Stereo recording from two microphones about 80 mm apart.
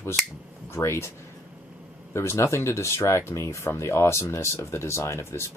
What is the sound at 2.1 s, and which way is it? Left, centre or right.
A man's voice, left.